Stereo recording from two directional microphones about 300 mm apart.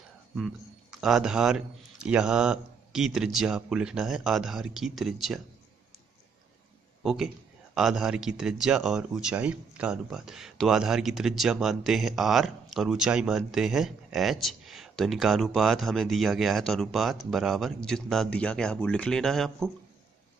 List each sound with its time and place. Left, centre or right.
1.0 s speech: centre
7.0 s a man's voice: centre